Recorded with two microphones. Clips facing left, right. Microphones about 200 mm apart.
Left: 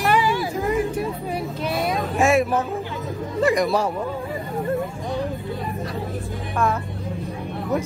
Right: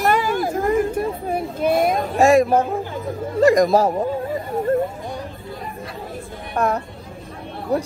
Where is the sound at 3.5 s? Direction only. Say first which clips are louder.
Right 5 dB; 45° right (ahead or behind).